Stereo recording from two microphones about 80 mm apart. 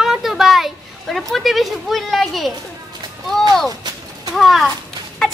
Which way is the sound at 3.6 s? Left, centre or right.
Right.